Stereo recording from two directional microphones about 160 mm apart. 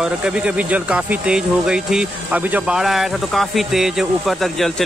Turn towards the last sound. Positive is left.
turn(degrees=0)  # may be behind; listen again after turning